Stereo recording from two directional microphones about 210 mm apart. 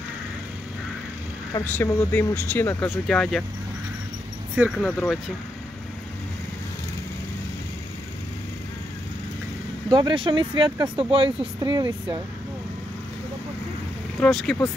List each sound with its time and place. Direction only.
1.5 s speech: 10° left (ahead or behind)
4.6 s speech: 5° right (ahead or behind)
9.8 s speech: 20° right (ahead or behind)
14.2 s speech: centre (ahead or behind)